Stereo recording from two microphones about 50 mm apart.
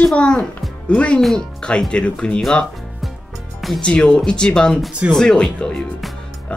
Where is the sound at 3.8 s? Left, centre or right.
Centre.